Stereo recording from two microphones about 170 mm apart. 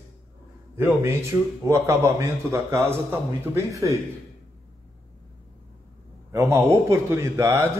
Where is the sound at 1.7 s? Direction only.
15° right (ahead or behind).